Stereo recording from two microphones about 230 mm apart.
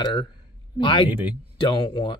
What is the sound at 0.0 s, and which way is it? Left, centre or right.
Speech, centre.